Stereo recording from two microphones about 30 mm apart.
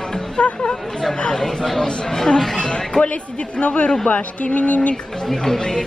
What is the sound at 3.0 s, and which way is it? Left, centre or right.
Speech, left.